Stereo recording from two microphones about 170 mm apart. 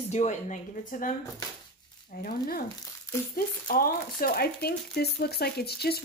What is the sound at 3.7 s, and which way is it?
Speech, 60° left (ahead or behind).